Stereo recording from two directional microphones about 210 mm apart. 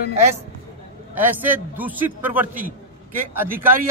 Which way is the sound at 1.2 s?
10° right (ahead or behind).